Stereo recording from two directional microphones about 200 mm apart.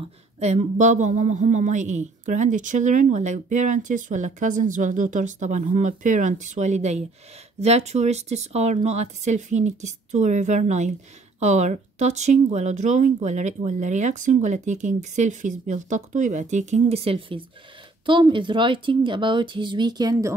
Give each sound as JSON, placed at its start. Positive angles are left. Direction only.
{"t": 0.4, "sound": "a woman's voice", "side_deg": -35}